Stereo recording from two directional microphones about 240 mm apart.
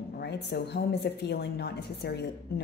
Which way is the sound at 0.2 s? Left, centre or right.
Left.